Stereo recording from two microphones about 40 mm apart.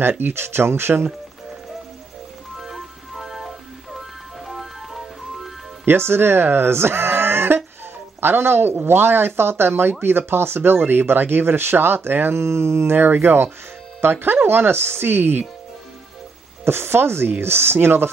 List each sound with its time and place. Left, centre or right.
0.2 s speech: right
2.6 s music: centre
5.9 s speech: right
8.8 s speech: right
16.6 s speech: right